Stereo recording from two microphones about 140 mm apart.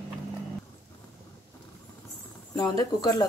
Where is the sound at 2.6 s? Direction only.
25° left (ahead or behind).